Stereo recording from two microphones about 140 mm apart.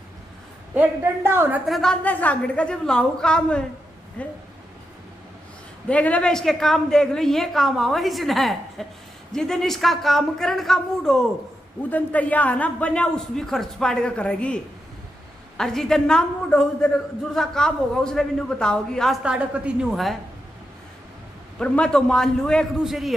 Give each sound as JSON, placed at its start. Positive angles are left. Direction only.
{"t": 0.7, "sound": "a woman's voice", "side_deg": -15}
{"t": 1.7, "sound": "a man's voice", "side_deg": 5}
{"t": 5.9, "sound": "a woman's voice", "side_deg": 10}
{"t": 19.2, "sound": "a woman's voice", "side_deg": -10}
{"t": 21.5, "sound": "a woman's voice", "side_deg": 5}